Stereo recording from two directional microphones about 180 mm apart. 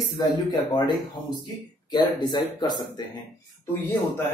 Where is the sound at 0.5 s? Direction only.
25° left (ahead or behind).